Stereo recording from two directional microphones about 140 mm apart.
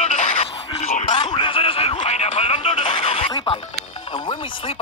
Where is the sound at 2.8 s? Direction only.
40° left (ahead or behind).